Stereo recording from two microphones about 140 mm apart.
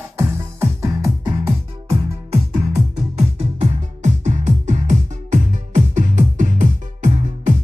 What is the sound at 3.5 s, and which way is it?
Music, 55° right (ahead or behind).